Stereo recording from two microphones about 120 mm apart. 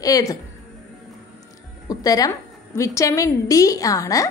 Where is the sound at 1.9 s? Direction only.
30° left (ahead or behind).